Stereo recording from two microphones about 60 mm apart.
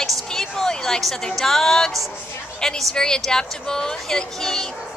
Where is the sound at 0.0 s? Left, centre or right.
Centre.